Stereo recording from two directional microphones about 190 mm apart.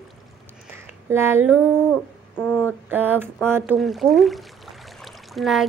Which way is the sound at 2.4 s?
10° left (ahead or behind).